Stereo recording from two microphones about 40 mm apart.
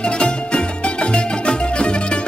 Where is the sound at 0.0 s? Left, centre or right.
Left.